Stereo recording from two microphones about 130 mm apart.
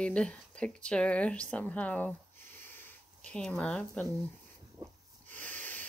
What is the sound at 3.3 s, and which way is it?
Speech, 5° left (ahead or behind).